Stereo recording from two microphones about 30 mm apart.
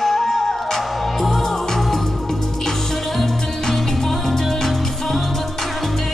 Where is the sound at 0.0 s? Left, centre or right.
Centre.